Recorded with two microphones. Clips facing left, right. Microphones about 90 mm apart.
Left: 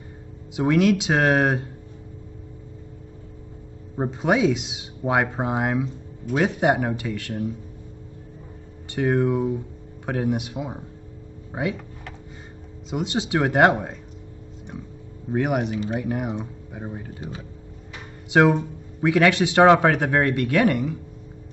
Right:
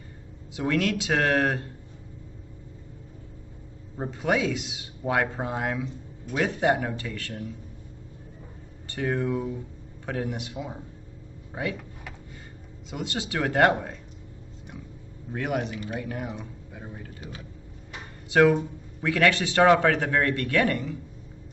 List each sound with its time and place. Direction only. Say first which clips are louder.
0.6 s speech: left 7 dB; 20° left (ahead or behind)
3.9 s a man's voice: left 4 dB; 25° left (ahead or behind)
8.9 s a man's voice: left 6 dB; 20° left (ahead or behind)
12.9 s speech: left 7 dB; 20° left (ahead or behind)
15.3 s a man's voice: left 6 dB; 20° left (ahead or behind)